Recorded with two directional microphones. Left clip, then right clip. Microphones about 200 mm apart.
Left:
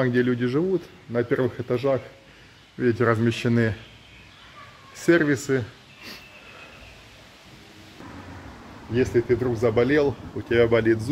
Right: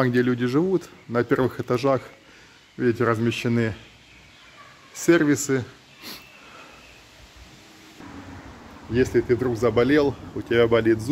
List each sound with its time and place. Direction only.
0.0 s speech: 20° right (ahead or behind)
2.8 s speech: 15° right (ahead or behind)
4.9 s speech: 10° right (ahead or behind)
8.9 s speech: 20° right (ahead or behind)